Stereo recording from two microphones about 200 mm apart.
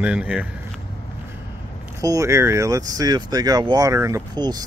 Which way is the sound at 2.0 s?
15° right (ahead or behind).